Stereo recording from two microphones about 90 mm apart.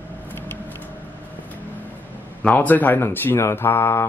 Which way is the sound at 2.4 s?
20° left (ahead or behind).